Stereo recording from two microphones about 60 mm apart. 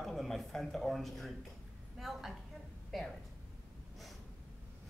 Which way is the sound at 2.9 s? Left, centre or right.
Centre.